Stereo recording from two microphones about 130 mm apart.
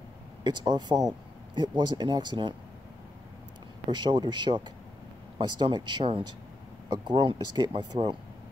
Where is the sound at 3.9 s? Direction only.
35° right (ahead or behind).